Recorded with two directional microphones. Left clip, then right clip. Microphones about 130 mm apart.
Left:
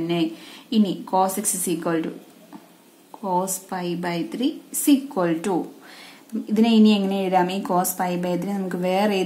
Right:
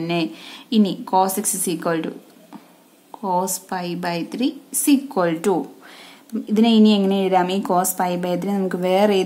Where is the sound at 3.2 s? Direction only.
35° right (ahead or behind).